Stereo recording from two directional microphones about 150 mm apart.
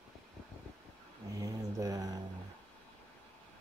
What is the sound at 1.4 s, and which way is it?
Mantra, 25° right (ahead or behind).